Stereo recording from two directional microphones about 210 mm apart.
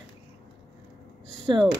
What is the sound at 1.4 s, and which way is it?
Speech, 25° right (ahead or behind).